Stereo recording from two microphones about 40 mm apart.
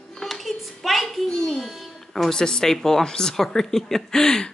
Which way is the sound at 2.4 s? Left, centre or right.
Centre.